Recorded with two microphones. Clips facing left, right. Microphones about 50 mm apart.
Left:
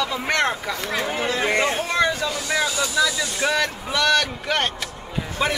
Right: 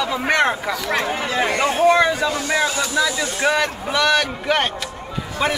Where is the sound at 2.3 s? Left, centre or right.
Right.